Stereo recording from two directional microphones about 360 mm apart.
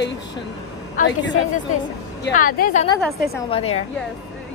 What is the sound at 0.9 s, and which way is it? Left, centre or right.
A woman's voice, left.